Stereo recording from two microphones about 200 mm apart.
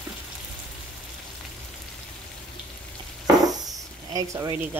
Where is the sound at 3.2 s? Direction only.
20° right (ahead or behind).